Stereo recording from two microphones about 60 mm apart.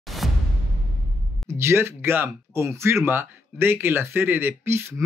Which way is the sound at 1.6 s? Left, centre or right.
Right.